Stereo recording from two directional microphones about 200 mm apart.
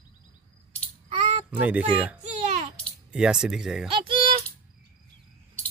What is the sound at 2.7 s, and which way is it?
Speech, centre (ahead or behind).